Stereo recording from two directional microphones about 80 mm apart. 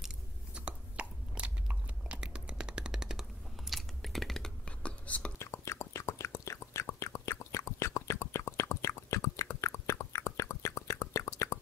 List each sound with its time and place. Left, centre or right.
0.6 s chewing: centre
4.6 s whispering: centre
5.4 s whispering: left